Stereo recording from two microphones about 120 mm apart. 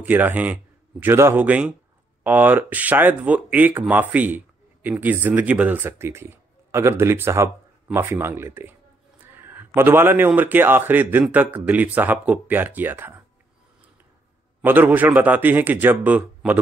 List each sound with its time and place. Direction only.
0.0 s a man's voice: 15° right (ahead or behind)
14.6 s a man's voice: 15° right (ahead or behind)